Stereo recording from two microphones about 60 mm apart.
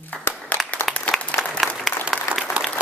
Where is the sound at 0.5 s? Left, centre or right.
Left.